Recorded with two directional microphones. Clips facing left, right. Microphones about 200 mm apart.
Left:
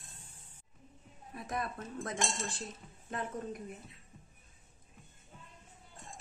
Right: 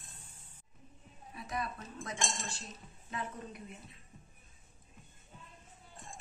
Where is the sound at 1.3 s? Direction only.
50° left (ahead or behind).